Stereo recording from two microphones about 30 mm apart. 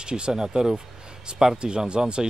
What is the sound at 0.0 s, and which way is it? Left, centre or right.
Speech, right.